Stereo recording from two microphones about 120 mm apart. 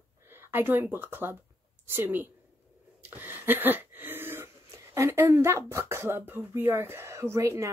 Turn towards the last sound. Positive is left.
turn(degrees=-25)  # may be behind; listen again after turning